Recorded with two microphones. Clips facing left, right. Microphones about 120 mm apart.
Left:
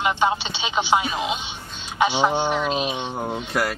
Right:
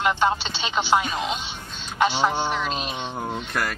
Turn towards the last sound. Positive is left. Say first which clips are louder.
# left 3 dB
turn(degrees=10)  # may be behind; listen again after turning